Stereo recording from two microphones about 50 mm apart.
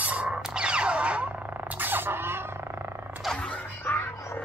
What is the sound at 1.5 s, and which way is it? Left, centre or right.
Music, right.